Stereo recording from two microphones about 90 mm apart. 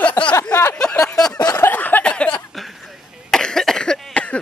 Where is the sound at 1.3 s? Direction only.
45° left (ahead or behind).